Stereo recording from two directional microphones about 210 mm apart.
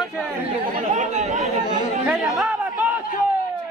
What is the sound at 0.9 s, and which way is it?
Chatter, 35° right (ahead or behind).